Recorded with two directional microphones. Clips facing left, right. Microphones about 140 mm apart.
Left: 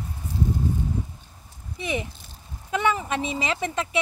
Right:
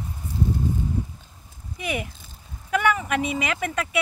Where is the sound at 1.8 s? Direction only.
25° left (ahead or behind).